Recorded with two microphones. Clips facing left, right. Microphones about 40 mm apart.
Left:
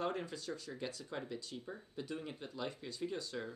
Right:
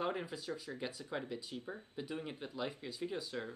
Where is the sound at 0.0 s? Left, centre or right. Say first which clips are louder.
Right 1 dB; centre.